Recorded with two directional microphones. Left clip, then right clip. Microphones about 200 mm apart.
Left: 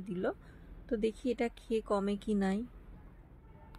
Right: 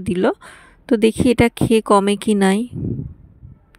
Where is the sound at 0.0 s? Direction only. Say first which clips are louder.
Right 18 dB; 50° right (ahead or behind).